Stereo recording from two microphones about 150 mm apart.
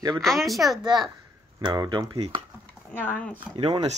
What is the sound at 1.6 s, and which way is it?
Speech, 30° right (ahead or behind).